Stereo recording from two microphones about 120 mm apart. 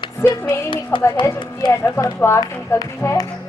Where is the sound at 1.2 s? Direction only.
40° left (ahead or behind).